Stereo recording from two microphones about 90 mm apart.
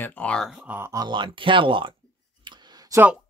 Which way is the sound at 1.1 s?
65° right (ahead or behind).